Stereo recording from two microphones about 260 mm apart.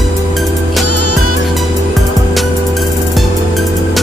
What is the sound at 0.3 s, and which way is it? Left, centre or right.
Music, centre.